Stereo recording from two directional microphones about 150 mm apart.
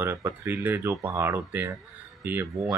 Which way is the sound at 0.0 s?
15° right (ahead or behind).